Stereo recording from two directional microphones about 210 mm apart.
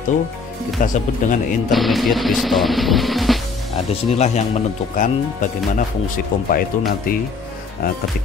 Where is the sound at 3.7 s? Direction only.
30° left (ahead or behind); by 8.0 s 45° left (ahead or behind).